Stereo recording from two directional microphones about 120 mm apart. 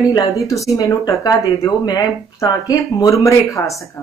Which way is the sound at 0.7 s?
30° left (ahead or behind).